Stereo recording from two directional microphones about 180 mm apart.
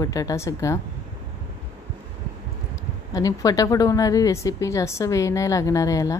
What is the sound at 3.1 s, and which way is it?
A woman's voice, 20° left (ahead or behind).